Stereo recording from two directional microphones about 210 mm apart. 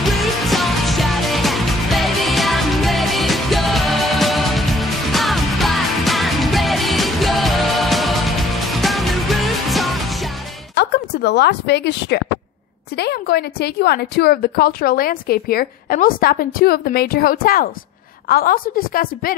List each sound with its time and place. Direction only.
0.0 s music: centre (ahead or behind)
10.8 s a woman's voice: 50° left (ahead or behind)